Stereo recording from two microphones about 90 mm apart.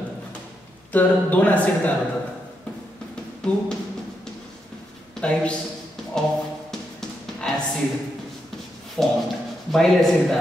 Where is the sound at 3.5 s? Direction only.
10° left (ahead or behind).